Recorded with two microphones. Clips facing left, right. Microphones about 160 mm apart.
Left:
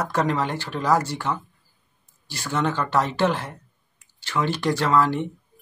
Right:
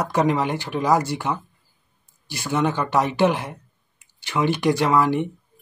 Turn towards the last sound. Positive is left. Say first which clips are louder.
# right 2 dB
turn(degrees=-15)  # may be behind; listen again after turning